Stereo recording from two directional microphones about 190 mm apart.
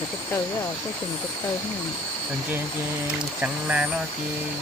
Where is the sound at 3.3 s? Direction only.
5° right (ahead or behind).